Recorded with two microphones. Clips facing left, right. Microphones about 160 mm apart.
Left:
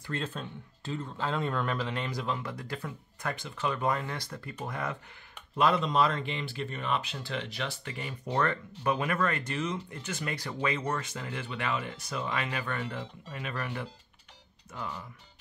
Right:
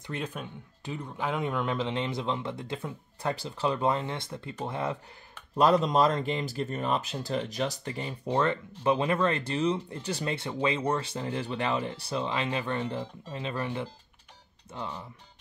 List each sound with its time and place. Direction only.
0.0 s speech: 15° right (ahead or behind)
5.6 s speech: 40° right (ahead or behind)
8.3 s speech: 20° right (ahead or behind)